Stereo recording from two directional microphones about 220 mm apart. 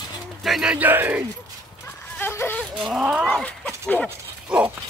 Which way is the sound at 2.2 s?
10° left (ahead or behind).